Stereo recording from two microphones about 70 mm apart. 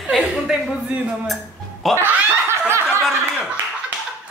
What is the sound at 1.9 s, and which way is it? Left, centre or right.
Snicker, right.